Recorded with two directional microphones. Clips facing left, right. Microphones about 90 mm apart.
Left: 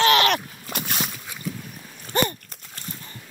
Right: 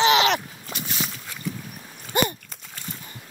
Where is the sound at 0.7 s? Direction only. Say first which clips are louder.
Left 2 dB; 55° left (ahead or behind).